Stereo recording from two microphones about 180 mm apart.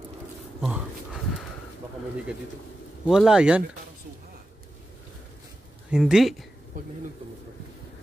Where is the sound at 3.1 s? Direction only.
5° right (ahead or behind).